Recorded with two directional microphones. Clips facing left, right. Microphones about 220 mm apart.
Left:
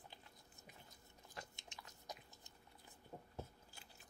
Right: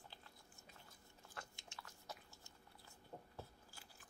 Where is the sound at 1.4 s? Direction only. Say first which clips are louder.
Left 1 dB; 20° left (ahead or behind).